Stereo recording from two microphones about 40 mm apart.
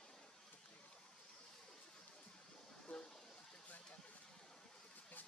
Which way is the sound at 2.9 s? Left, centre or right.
Left.